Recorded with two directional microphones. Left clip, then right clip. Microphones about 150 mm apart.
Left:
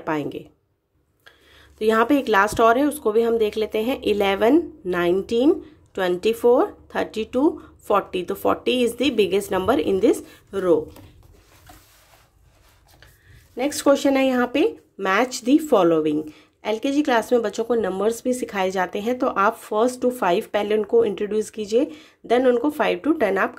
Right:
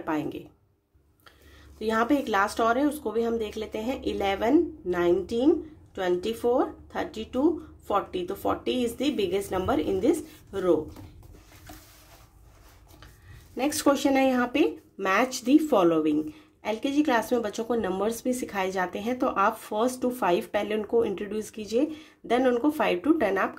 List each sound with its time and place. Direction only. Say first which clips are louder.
0.0 s speech: left 5 dB; 35° left (ahead or behind)
1.8 s speech: left 7 dB; 40° left (ahead or behind)
13.6 s speech: left 5 dB; 20° left (ahead or behind)